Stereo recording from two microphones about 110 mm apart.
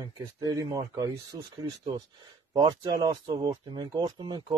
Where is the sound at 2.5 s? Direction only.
35° right (ahead or behind).